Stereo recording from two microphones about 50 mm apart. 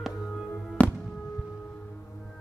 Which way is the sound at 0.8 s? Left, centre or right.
Left.